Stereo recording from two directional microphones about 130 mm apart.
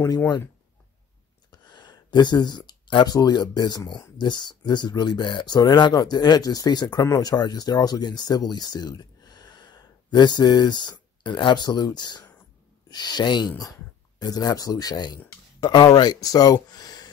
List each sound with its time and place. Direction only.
0.0 s speech: 25° left (ahead or behind)
1.5 s speech: 35° left (ahead or behind)